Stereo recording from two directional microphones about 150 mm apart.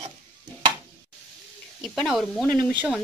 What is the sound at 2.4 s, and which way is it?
Speech, 20° right (ahead or behind).